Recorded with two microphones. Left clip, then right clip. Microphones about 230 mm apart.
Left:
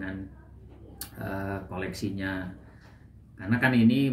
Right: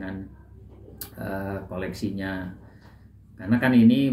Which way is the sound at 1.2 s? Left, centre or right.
Centre.